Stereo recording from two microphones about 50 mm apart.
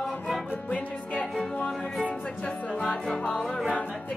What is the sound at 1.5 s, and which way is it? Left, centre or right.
Music, left.